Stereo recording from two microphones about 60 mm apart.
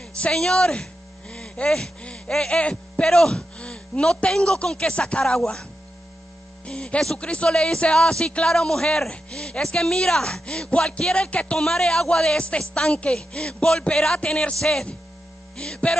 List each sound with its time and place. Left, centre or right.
0.2 s a man's voice: centre
1.3 s a sound: centre
2.0 s a man's voice: centre
11.5 s a man's voice: centre